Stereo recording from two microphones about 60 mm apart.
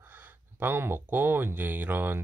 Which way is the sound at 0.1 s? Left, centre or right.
Right.